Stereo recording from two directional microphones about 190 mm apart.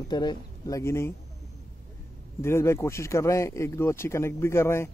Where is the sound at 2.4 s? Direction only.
15° left (ahead or behind).